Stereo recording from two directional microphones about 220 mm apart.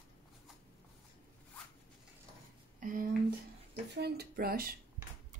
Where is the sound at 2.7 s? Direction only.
40° right (ahead or behind).